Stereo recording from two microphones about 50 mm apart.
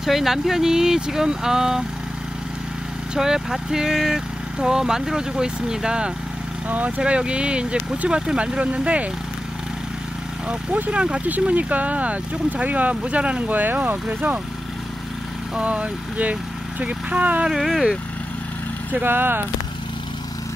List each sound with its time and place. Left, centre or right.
0.0 s speech: centre
3.2 s speech: centre; by 9.1 s right
10.7 s speech: right
11.2 s speech: right
13.5 s speech: right
15.6 s speech: right
17.5 s speech: centre
18.9 s speech: right